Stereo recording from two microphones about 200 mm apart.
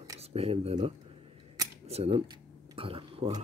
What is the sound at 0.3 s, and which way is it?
Speech, 30° right (ahead or behind).